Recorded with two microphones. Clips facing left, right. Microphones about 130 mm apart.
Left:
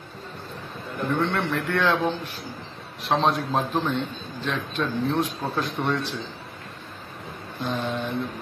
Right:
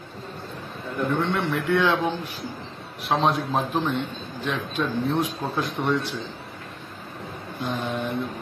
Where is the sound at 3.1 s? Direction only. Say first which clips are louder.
Even; centre (ahead or behind).